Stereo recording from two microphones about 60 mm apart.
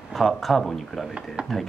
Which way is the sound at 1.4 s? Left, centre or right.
Centre.